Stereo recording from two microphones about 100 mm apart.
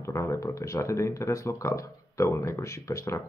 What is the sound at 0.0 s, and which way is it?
Speech, 30° left (ahead or behind).